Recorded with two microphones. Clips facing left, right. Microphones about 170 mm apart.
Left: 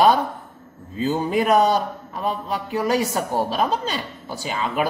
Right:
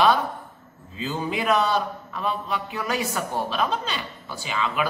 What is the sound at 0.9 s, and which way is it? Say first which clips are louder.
A man's voice: left 7 dB; 45° left (ahead or behind).